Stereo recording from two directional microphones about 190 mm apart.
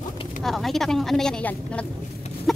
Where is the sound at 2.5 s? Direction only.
Centre (ahead or behind).